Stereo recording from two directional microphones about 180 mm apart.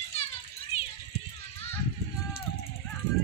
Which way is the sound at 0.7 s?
35° left (ahead or behind).